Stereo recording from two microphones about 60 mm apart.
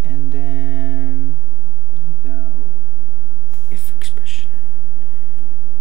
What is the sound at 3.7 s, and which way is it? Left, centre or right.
Whispering, centre.